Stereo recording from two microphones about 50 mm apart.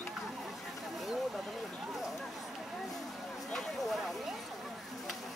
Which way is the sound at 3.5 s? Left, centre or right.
Centre.